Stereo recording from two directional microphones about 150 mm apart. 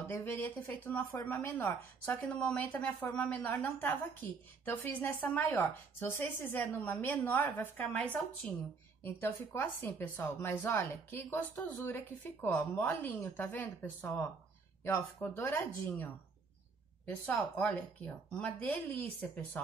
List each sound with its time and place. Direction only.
0.1 s speech: 15° left (ahead or behind)
17.3 s speech: centre (ahead or behind)